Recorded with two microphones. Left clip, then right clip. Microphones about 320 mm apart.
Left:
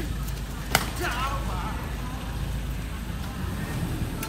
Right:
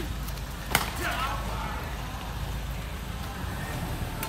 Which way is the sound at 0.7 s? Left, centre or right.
Centre.